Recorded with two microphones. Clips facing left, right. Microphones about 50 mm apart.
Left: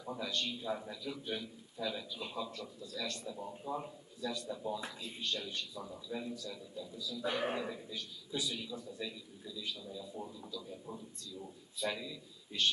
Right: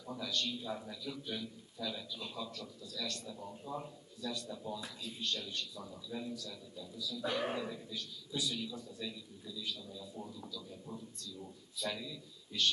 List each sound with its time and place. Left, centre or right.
0.0 s a man's voice: left
4.7 s speech: left
5.2 s a man's voice: centre